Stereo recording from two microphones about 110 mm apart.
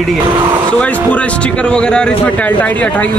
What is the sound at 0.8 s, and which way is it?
Speech, 10° left (ahead or behind).